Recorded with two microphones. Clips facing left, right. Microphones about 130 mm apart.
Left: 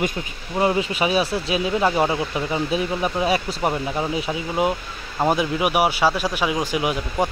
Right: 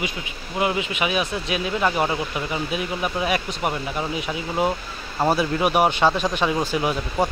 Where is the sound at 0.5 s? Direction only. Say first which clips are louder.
Left 3 dB; 35° left (ahead or behind).